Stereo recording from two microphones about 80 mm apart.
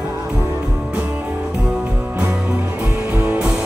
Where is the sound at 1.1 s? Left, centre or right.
Centre.